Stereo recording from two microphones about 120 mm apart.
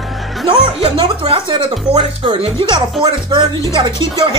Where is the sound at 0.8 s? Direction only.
50° right (ahead or behind).